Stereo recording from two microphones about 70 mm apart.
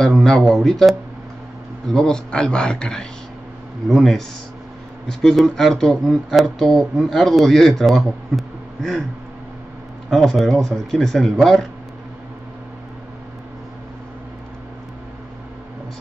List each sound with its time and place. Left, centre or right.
0.0 s speech: centre
3.9 s speech: centre
10.0 s speech: centre